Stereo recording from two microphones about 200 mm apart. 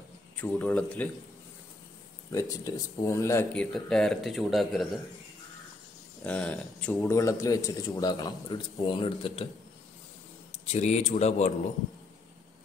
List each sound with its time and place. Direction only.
0.4 s speech: 10° left (ahead or behind)
2.3 s speech: 15° left (ahead or behind)
3.7 s speech: centre (ahead or behind)
6.2 s speech: 5° left (ahead or behind); by 9.5 s 25° left (ahead or behind)
10.5 s speech: 35° left (ahead or behind)